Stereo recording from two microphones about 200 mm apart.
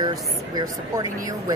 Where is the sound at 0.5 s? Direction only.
20° right (ahead or behind).